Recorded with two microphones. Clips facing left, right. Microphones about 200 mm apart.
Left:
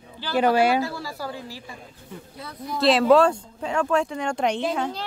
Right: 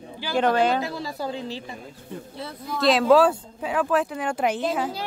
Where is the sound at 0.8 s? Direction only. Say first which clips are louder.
Even; 20° right (ahead or behind).